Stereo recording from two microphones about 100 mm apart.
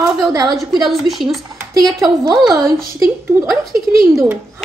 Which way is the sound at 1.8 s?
40° right (ahead or behind).